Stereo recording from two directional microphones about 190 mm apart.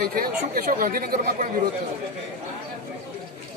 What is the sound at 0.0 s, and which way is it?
Speech, 50° right (ahead or behind).